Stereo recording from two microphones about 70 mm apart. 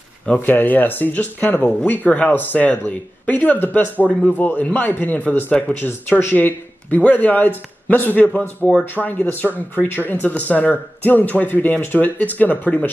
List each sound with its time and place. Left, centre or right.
0.3 s speech: left
5.8 s speech: left; by 8.8 s centre
8.9 s speech: left